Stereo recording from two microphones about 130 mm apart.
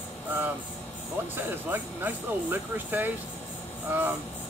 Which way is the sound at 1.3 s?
15° right (ahead or behind).